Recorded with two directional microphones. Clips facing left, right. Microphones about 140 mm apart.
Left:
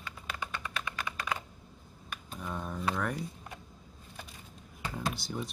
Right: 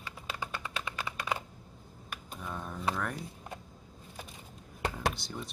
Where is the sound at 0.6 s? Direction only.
30° right (ahead or behind).